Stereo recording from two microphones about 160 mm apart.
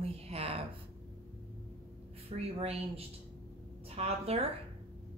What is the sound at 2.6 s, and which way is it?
Speech, 40° right (ahead or behind).